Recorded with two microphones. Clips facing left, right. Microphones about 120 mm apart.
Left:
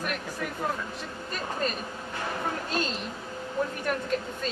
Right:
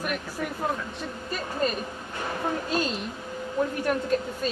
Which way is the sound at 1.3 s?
5° right (ahead or behind).